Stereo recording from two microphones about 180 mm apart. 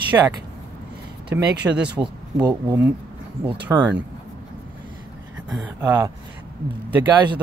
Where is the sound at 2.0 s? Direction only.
20° right (ahead or behind).